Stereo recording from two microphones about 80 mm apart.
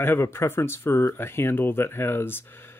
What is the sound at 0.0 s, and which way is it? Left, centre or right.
Speech, left.